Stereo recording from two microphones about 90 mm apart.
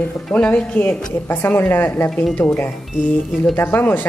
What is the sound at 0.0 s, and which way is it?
Speech, 15° left (ahead or behind).